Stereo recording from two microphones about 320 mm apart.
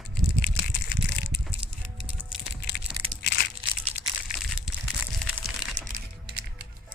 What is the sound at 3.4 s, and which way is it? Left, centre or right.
Crumpling, left.